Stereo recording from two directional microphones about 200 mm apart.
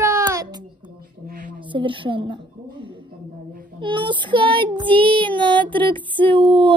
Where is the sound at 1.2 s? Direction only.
40° right (ahead or behind).